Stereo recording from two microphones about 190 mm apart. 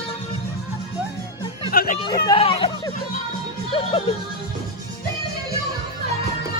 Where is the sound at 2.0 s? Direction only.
25° left (ahead or behind).